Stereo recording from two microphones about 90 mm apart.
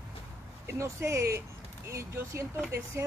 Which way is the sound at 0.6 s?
30° right (ahead or behind).